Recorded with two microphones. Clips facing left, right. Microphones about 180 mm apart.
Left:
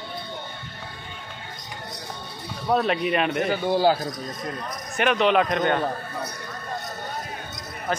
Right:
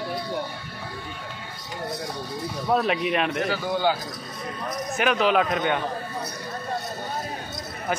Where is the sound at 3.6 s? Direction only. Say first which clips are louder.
Left 5 dB; 30° left (ahead or behind).